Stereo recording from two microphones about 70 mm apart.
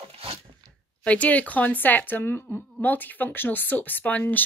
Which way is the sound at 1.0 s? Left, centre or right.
Centre.